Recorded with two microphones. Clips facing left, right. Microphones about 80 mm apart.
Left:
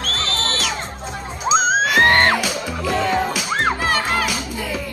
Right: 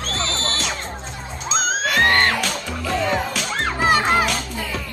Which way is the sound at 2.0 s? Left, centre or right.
Left.